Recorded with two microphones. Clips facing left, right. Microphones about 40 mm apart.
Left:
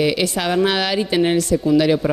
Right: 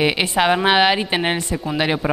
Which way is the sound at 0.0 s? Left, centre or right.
Right.